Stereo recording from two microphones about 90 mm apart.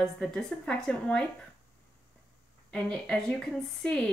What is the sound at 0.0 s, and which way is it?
Speech, 5° left (ahead or behind).